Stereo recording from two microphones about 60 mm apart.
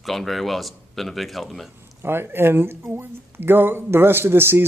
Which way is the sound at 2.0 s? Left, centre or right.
Right.